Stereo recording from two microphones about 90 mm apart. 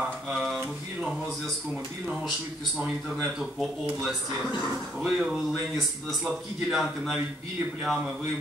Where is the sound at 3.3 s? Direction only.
5° right (ahead or behind).